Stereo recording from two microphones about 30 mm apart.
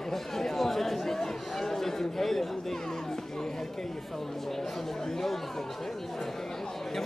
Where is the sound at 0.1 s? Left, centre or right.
Centre.